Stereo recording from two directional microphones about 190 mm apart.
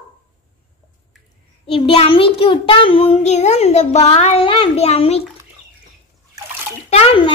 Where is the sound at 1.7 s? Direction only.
30° left (ahead or behind).